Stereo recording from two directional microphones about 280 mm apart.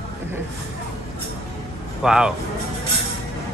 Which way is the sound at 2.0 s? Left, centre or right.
Centre.